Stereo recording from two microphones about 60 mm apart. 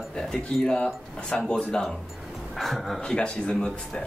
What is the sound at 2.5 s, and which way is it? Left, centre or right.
Speech, centre.